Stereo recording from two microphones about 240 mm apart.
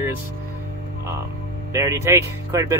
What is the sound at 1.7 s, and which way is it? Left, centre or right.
Speech, centre.